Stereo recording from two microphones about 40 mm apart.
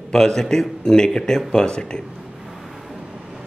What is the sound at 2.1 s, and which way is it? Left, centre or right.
Vehicle, centre.